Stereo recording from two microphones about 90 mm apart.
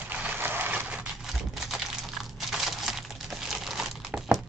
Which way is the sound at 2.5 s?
Centre (ahead or behind).